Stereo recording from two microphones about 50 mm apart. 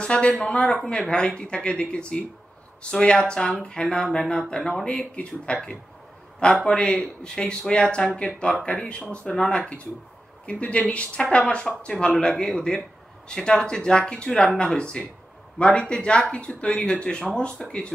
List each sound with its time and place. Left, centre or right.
0.0 s speech: left
4.8 s speech: left